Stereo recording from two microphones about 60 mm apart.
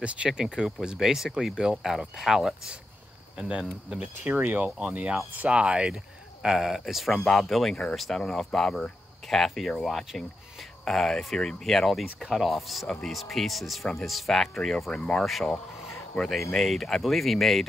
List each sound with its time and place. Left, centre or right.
0.0 s speech: centre
4.2 s speech: right
5.4 s speech: centre
8.2 s speech: centre
16.2 s speech: centre